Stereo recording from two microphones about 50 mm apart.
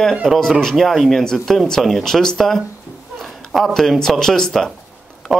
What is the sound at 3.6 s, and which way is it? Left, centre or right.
Speech, centre.